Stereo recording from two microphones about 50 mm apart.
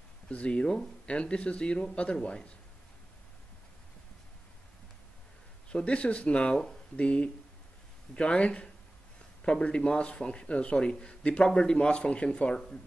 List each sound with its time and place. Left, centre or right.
0.3 s speech: left
5.7 s speech: left